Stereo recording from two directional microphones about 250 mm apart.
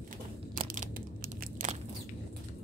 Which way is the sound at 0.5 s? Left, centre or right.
Right.